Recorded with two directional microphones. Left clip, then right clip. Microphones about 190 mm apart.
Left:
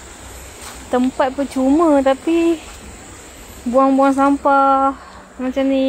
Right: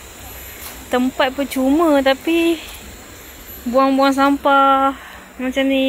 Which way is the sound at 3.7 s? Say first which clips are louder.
Left 1 dB; 10° left (ahead or behind).